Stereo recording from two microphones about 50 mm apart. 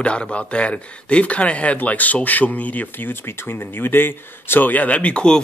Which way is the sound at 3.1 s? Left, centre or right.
Left.